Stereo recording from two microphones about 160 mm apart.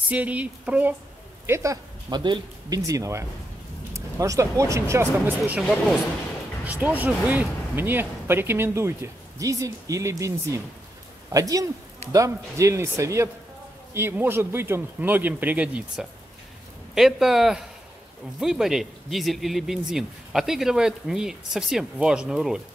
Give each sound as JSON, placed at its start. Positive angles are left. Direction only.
{"t": 0.1, "sound": "speech", "side_deg": -10}